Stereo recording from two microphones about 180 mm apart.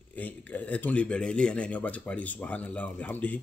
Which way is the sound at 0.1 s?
10° left (ahead or behind).